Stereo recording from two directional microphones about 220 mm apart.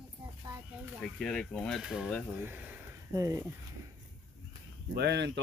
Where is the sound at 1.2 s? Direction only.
Centre (ahead or behind); by 3.4 s 15° right (ahead or behind).